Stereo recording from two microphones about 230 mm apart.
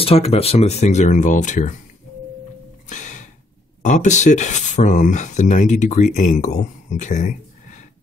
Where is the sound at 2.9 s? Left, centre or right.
Left.